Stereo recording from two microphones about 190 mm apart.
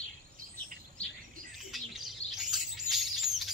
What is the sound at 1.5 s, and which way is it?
Bird, centre (ahead or behind).